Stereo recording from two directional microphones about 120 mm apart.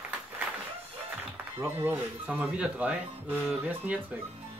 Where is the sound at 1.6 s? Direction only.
20° right (ahead or behind).